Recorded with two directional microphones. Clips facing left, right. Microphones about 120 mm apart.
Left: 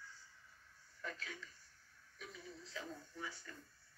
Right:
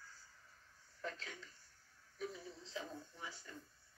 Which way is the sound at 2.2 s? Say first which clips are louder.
Right 6 dB; 25° right (ahead or behind).